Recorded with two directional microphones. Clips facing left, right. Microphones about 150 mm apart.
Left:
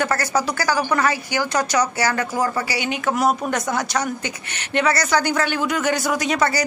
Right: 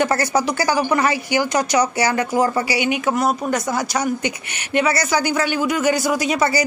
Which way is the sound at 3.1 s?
Centre (ahead or behind).